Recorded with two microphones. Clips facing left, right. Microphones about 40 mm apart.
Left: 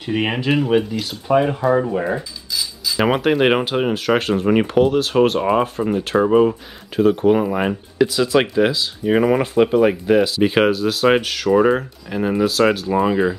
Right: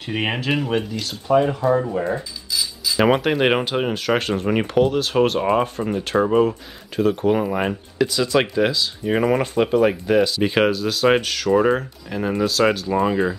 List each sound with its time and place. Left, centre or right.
0.0 s speech: centre
2.5 s speech: centre